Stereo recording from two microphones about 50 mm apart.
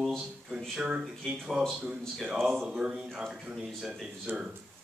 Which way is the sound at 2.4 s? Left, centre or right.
Centre.